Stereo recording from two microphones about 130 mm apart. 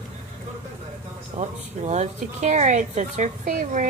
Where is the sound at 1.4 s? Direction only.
65° right (ahead or behind).